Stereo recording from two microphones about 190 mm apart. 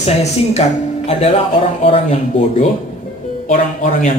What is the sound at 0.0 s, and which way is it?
A man's voice, 35° left (ahead or behind).